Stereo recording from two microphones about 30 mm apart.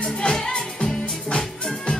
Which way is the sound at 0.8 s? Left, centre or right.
Left.